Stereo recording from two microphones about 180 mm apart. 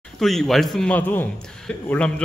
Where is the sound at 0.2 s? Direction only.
Centre (ahead or behind).